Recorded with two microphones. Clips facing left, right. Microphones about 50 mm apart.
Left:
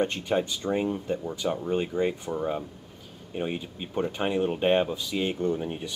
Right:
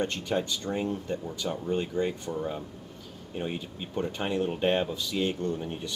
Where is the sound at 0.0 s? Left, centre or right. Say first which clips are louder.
Left 3 dB; centre.